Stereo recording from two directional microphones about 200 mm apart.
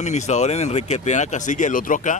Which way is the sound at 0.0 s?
35° left (ahead or behind).